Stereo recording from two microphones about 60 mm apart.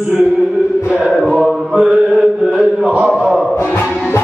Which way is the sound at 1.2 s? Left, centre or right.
Centre.